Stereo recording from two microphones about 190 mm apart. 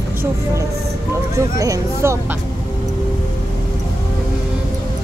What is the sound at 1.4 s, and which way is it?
Speech, 15° right (ahead or behind).